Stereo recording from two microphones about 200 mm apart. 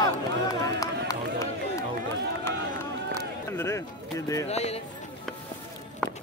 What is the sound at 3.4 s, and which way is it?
Speech, 15° left (ahead or behind).